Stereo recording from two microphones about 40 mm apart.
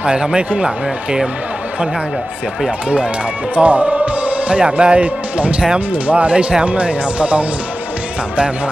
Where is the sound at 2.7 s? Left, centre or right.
Right.